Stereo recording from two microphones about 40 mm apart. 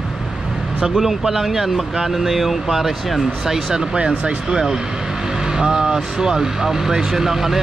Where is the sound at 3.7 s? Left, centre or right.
Right.